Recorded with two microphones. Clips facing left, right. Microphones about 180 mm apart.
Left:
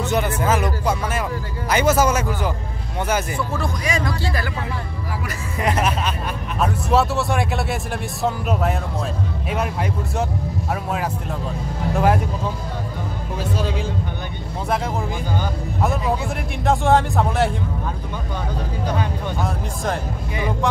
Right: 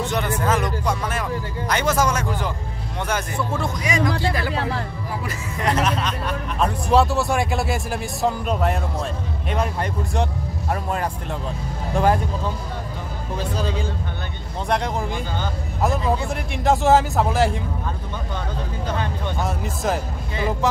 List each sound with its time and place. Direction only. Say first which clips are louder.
0.0 s speech: left 2 dB; 5° left (ahead or behind)
3.5 s speech: right 1 dB; 20° right (ahead or behind)
5.6 s speech: even; 10° left (ahead or behind)
13.4 s speech: left 1 dB; 5° left (ahead or behind)
15.8 s speech: right 1 dB; centre (ahead or behind)
18.9 s speech: left 2 dB; 10° left (ahead or behind)
19.4 s speech: right 2 dB; 5° right (ahead or behind)